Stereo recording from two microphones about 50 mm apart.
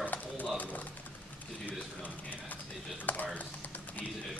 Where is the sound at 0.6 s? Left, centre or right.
Left.